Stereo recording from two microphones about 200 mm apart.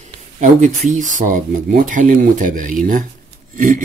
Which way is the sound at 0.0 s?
35° right (ahead or behind).